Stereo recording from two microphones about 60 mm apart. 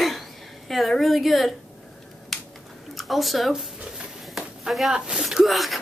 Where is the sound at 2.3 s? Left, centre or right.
Centre.